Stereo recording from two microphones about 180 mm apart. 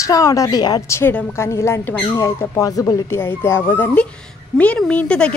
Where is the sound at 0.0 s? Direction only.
20° left (ahead or behind).